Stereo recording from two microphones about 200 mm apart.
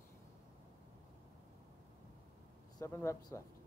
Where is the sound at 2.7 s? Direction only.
15° left (ahead or behind).